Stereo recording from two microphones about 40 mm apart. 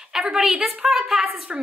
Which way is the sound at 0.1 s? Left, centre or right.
Centre.